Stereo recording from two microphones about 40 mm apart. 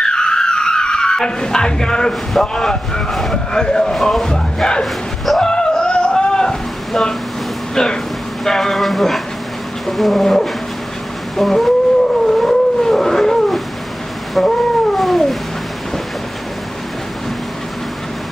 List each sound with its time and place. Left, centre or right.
0.0 s a sound: centre
2.4 s speech: centre
3.1 s speech: centre
3.5 s speech: centre
5.2 s a sound: centre
5.5 s music: centre
6.9 s speech: centre
12.3 s a sound: centre
14.3 s cat: centre